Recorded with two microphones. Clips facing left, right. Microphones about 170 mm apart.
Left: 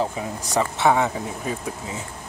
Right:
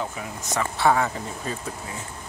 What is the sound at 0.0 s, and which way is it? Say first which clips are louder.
Speech: left 6 dB; 35° left (ahead or behind).